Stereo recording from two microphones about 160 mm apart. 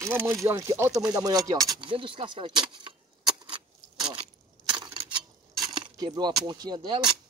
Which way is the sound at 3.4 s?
30° right (ahead or behind).